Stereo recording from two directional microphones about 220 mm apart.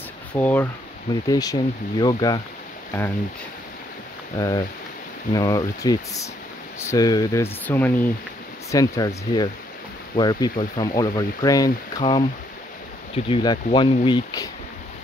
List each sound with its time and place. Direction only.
0.3 s speech: 5° left (ahead or behind)
4.4 s speech: 15° left (ahead or behind)